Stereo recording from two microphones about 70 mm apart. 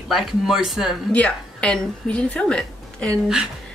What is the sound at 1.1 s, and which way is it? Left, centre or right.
A woman's voice, centre.